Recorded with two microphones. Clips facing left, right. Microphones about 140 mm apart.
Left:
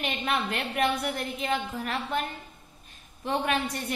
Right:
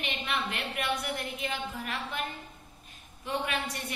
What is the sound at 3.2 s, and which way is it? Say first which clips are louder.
Speech: left 5 dB; 40° left (ahead or behind).